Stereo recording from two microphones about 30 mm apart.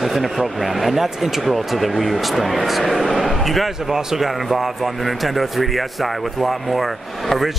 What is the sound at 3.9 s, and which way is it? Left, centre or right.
Speech, centre.